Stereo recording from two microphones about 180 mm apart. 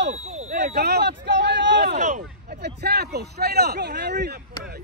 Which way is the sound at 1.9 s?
40° right (ahead or behind).